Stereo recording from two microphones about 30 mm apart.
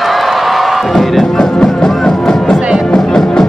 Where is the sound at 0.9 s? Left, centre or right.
Centre.